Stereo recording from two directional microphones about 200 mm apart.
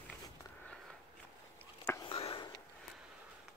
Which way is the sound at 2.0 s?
25° left (ahead or behind).